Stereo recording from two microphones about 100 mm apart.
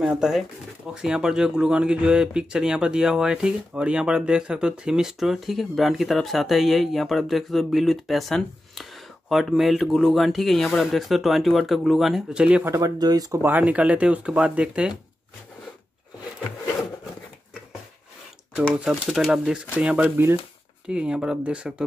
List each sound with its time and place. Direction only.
0.0 s speech: 5° right (ahead or behind)
12.6 s speech: 30° right (ahead or behind)
13.4 s speech: 15° right (ahead or behind)
18.9 s speech: centre (ahead or behind)